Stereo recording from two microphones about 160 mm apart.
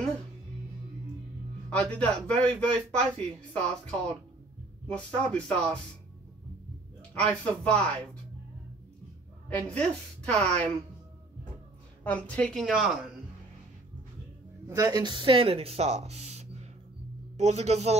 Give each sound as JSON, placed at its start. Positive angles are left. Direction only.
{"t": 1.7, "sound": "speech", "side_deg": 5}
{"t": 7.0, "sound": "speech", "side_deg": 5}
{"t": 9.5, "sound": "speech", "side_deg": 5}
{"t": 12.0, "sound": "speech", "side_deg": 10}
{"t": 14.7, "sound": "speech", "side_deg": -20}